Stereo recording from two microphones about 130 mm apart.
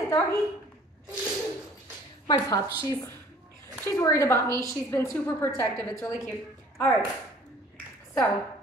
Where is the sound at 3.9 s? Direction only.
25° left (ahead or behind).